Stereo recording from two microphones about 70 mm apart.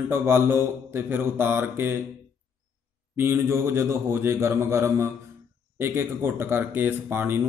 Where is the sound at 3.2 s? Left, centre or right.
Right.